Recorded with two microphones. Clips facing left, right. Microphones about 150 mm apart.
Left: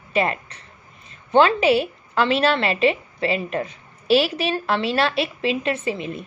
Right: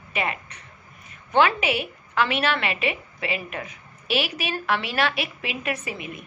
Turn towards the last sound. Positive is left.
turn(degrees=30)  # may be behind; listen again after turning